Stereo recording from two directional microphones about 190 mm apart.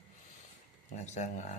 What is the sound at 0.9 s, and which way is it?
Speech, 35° left (ahead or behind).